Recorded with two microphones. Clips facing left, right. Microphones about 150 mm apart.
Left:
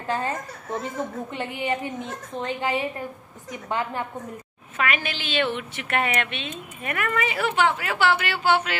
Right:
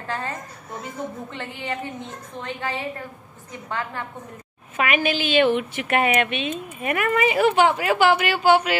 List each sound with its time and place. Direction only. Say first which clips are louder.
0.1 s a woman's voice: left 3 dB; 15° left (ahead or behind)
4.7 s a woman's voice: right 5 dB; 15° right (ahead or behind)